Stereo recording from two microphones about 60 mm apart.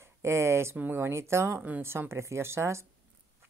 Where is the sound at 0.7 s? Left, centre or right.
Right.